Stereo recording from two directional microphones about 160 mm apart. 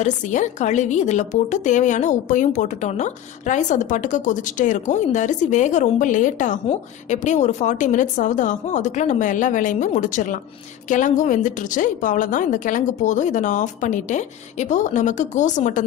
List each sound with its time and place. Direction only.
0.0 s a woman's voice: 50° left (ahead or behind)